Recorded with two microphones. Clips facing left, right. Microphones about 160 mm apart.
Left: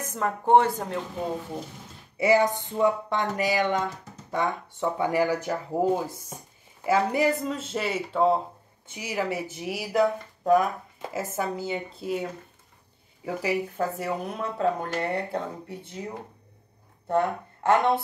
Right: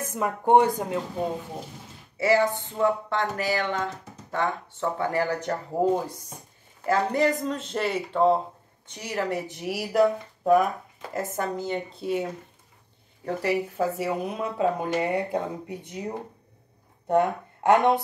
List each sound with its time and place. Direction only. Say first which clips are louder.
0.0 s speech: right 1 dB; 10° right (ahead or behind)
2.1 s speech: left 1 dB; 15° left (ahead or behind); by 16.1 s 15° right (ahead or behind)
17.1 s speech: right 2 dB; 15° right (ahead or behind)